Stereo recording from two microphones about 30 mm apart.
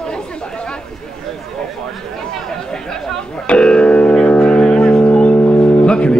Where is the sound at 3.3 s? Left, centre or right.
Left.